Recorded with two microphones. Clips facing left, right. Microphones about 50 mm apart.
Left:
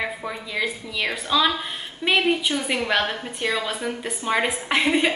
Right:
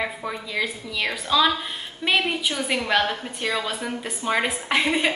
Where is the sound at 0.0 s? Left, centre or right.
Centre.